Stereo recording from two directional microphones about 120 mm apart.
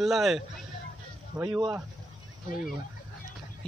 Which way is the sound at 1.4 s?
25° right (ahead or behind).